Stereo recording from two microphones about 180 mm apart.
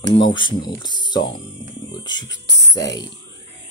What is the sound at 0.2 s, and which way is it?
Speech, 25° left (ahead or behind).